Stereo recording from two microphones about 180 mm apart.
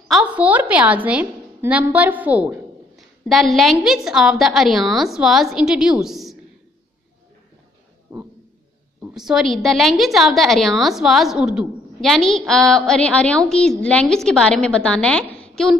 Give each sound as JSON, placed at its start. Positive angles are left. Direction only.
{"t": 0.1, "sound": "a woman's voice", "side_deg": -5}
{"t": 8.1, "sound": "a sound", "side_deg": -15}
{"t": 9.1, "sound": "a woman's voice", "side_deg": 0}